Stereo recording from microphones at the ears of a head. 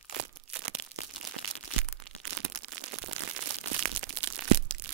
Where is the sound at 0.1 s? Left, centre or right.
Right.